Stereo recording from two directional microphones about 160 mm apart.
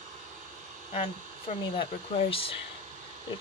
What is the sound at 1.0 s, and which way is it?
Speech, 35° left (ahead or behind).